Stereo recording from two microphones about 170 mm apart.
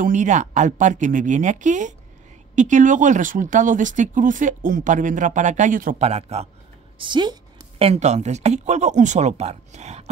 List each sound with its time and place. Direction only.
0.0 s speech: 45° right (ahead or behind)
7.0 s speech: 25° right (ahead or behind)
7.8 s speech: 40° right (ahead or behind)